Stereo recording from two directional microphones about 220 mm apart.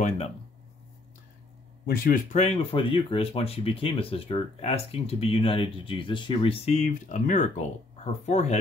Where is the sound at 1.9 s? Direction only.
45° left (ahead or behind).